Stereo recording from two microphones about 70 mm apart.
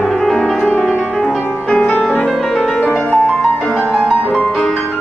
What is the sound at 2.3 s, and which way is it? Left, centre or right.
Music, centre.